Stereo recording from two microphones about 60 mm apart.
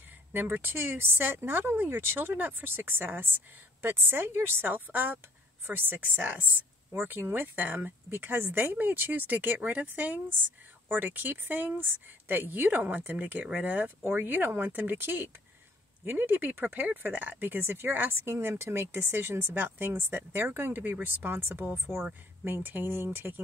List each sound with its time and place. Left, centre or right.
0.3 s speech: right